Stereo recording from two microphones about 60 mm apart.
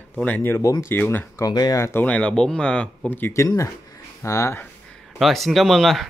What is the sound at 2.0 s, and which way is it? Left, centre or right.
Speech, centre.